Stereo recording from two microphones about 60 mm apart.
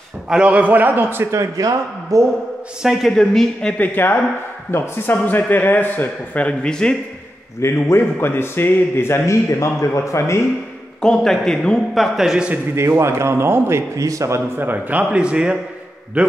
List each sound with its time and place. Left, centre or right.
0.3 s a man's voice: right
1.3 s speech: right
2.8 s speech: centre
3.1 s a man's voice: centre
3.7 s speech: left
4.6 s a man's voice: left; by 7.0 s centre
7.6 s speech: left
11.0 s a man's voice: centre
11.9 s speech: centre
12.7 s a man's voice: right
13.9 s speech: right
14.6 s a man's voice: right